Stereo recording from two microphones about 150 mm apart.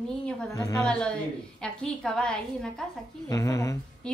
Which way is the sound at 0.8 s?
5° left (ahead or behind).